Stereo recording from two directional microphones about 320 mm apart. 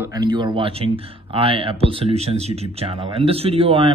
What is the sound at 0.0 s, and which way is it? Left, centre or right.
Speech, centre.